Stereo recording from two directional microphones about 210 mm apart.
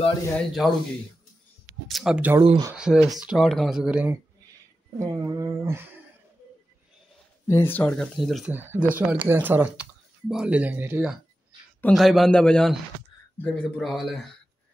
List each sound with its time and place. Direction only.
0.3 s speech: centre (ahead or behind)
1.9 s speech: centre (ahead or behind)
2.4 s speech: 25° right (ahead or behind)
2.7 s speech: 5° right (ahead or behind)
7.4 s speech: 10° left (ahead or behind)